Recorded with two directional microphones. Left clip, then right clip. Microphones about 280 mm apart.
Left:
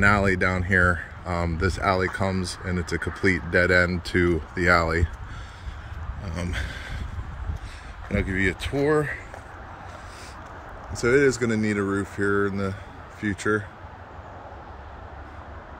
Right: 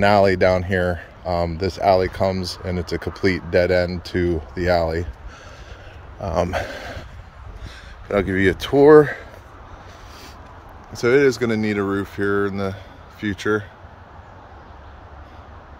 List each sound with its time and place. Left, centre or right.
0.0 s speech: centre
6.2 s speech: centre
8.1 s speech: centre
11.0 s speech: centre